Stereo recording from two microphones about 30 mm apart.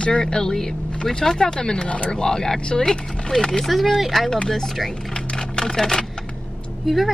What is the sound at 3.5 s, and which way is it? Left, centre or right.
Speech, centre.